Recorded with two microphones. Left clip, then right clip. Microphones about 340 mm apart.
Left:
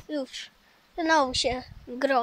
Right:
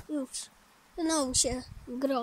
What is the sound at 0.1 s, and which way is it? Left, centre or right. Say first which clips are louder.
Speech: left 4 dB; centre.